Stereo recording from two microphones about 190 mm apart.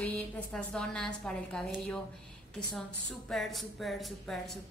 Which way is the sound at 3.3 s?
Centre (ahead or behind).